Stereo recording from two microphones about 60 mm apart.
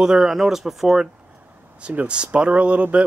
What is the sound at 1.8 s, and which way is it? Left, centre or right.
Speech, centre.